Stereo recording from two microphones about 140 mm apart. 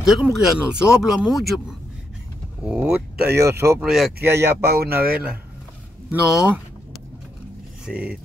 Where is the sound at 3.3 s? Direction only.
20° right (ahead or behind).